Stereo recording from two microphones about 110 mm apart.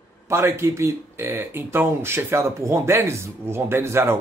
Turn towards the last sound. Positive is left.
turn(degrees=-20)  # may be behind; listen again after turning